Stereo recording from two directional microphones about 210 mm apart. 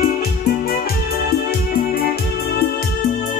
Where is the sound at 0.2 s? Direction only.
45° left (ahead or behind).